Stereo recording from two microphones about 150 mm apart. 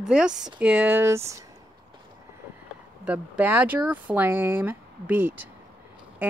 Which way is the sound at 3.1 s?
10° right (ahead or behind).